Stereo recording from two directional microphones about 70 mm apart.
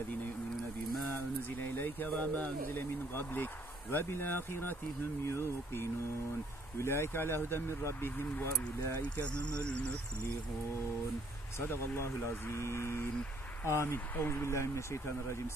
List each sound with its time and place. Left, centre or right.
1.1 s a sound: left
2.7 s speech: left
6.8 s speech: left
9.2 s speech: centre
11.6 s speech: left